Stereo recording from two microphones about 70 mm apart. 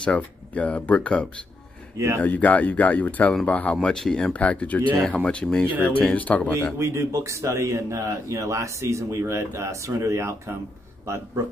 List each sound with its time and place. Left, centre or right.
0.0 s speech: centre
2.0 s a man's voice: right
2.2 s speech: left
3.7 s speech: centre
4.3 s speech: centre
6.8 s a man's voice: right